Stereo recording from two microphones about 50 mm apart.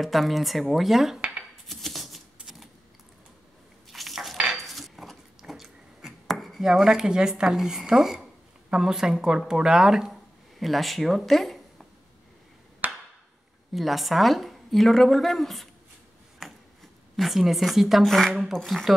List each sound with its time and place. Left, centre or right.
0.0 s a woman's voice: centre
1.7 s typewriter: centre
3.9 s dishes: centre
4.6 s a sound: centre
6.3 s chopping: centre
6.6 s speech: centre
10.6 s speech: centre
12.8 s a sound: right
13.7 s a woman's voice: centre
16.4 s a sound: centre
17.2 s a woman's voice: centre